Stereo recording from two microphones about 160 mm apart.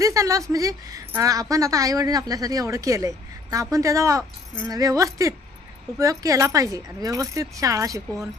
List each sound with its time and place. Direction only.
0.0 s a woman's voice: 20° right (ahead or behind)